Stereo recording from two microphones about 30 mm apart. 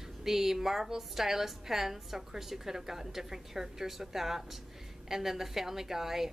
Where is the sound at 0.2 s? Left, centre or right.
Centre.